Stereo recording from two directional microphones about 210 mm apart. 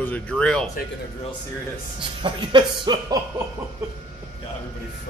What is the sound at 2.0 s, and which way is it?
Speech, 25° right (ahead or behind).